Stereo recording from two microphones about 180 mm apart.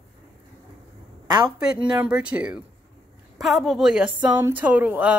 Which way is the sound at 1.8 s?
5° right (ahead or behind).